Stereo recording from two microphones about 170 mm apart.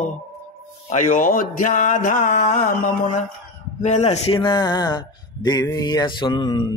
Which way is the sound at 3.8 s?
40° left (ahead or behind).